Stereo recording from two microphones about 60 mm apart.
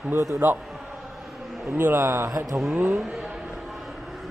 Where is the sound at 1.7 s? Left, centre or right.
Right.